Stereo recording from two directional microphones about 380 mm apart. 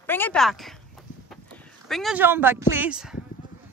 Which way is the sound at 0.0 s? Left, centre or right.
Centre.